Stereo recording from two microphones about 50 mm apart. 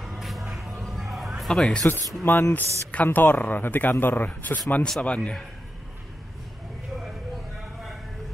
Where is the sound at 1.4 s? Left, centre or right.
Centre.